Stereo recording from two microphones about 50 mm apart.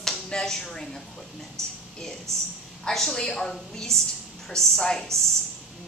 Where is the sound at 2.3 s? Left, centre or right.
Right.